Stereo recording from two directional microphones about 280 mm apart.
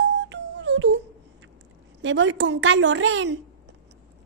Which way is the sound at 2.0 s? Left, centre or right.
Right.